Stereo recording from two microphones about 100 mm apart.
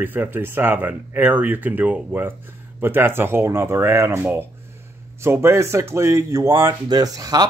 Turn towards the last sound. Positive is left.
turn(degrees=-40)  # may be behind; listen again after turning